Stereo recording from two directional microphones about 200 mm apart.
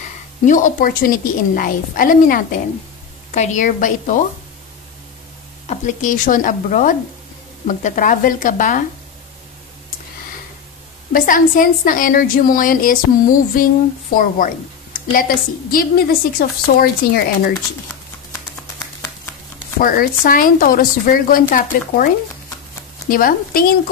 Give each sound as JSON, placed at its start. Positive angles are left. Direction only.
{"t": 0.5, "sound": "a woman's voice", "side_deg": 40}
{"t": 5.7, "sound": "a woman's voice", "side_deg": 40}
{"t": 11.1, "sound": "a woman's voice", "side_deg": 45}
{"t": 19.8, "sound": "a woman's voice", "side_deg": 45}